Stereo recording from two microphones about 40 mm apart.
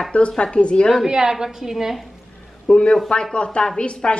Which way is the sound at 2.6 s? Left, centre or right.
Left.